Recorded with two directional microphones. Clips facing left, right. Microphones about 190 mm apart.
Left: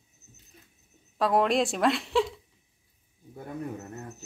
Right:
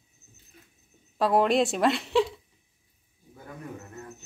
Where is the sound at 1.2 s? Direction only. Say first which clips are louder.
Right 2 dB; centre (ahead or behind).